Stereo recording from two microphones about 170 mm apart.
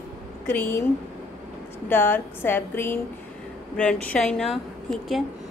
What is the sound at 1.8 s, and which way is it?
A woman's voice, 15° left (ahead or behind).